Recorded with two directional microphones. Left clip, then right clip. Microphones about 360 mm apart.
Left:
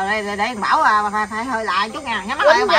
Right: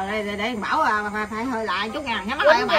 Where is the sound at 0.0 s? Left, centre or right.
Centre.